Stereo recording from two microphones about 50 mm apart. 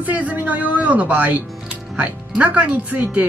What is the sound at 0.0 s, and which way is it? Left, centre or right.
Speech, right.